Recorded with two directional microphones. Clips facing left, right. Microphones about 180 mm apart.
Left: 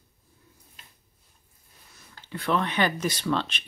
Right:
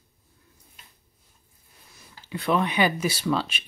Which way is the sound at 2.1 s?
10° right (ahead or behind).